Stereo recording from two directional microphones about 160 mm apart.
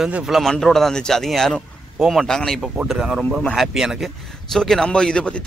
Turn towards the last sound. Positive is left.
turn(degrees=5)  # may be behind; listen again after turning